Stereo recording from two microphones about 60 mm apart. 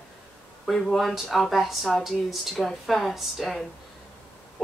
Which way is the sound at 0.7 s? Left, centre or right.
Centre.